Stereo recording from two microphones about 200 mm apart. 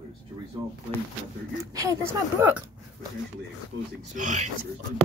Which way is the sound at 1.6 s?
15° right (ahead or behind).